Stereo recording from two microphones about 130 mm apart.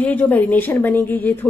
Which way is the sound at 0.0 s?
15° left (ahead or behind).